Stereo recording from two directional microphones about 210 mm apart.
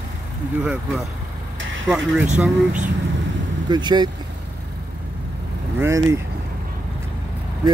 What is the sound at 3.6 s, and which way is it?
Speech, 20° right (ahead or behind).